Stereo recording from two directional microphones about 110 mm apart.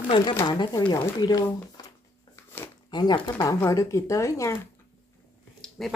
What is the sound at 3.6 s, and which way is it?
Speech, 25° left (ahead or behind).